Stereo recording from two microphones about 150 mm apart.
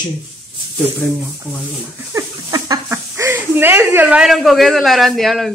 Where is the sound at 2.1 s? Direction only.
25° right (ahead or behind); by 5.5 s centre (ahead or behind).